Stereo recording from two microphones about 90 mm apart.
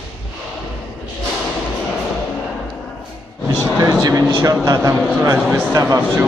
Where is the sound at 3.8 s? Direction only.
45° right (ahead or behind).